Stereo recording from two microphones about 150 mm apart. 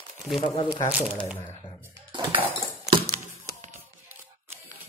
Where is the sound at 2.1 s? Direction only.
30° right (ahead or behind).